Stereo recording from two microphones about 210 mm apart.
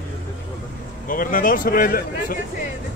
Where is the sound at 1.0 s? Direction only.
40° left (ahead or behind).